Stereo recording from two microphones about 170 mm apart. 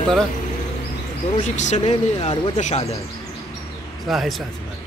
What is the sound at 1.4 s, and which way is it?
Speech, 45° left (ahead or behind).